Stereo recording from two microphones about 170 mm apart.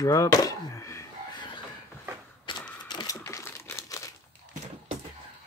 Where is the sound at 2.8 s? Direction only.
25° left (ahead or behind).